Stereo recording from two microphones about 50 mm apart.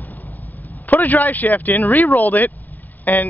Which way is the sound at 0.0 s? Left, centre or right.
Left.